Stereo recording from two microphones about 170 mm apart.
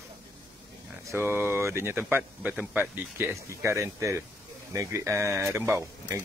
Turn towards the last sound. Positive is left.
turn(degrees=-15)  # may be behind; listen again after turning